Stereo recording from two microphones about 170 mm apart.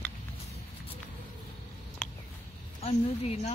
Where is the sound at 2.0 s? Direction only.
5° left (ahead or behind).